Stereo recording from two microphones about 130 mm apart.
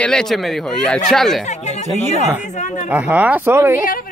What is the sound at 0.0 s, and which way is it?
Speech, 5° left (ahead or behind).